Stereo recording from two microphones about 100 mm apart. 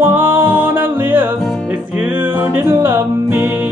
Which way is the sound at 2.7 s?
20° right (ahead or behind).